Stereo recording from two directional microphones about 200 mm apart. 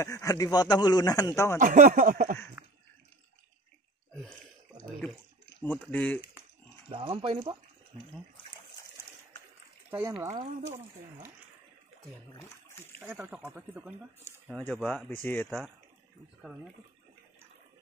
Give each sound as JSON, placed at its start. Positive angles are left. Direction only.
{"t": 0.0, "sound": "a man's voice", "side_deg": 15}
{"t": 1.6, "sound": "speech", "side_deg": -45}
{"t": 2.6, "sound": "a sound", "side_deg": -10}
{"t": 4.1, "sound": "a sound", "side_deg": 5}
{"t": 5.6, "sound": "speech", "side_deg": 10}
{"t": 6.9, "sound": "speech", "side_deg": -25}
{"t": 9.8, "sound": "speech", "side_deg": -15}
{"t": 13.0, "sound": "speech", "side_deg": -10}
{"t": 14.5, "sound": "speech", "side_deg": 10}
{"t": 14.8, "sound": "speech", "side_deg": 0}